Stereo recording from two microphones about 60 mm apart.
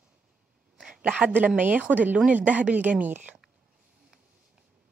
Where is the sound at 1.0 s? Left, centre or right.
Centre.